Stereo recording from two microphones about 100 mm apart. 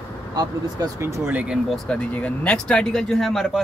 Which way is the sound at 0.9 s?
25° right (ahead or behind).